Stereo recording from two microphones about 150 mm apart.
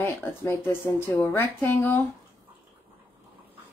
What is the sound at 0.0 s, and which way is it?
A woman's voice, 15° left (ahead or behind).